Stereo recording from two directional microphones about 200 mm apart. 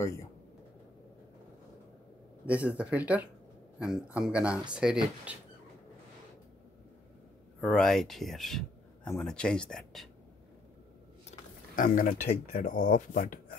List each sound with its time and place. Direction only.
2.4 s speech: 5° right (ahead or behind)
7.6 s speech: 5° left (ahead or behind)
11.2 s speech: 40° left (ahead or behind)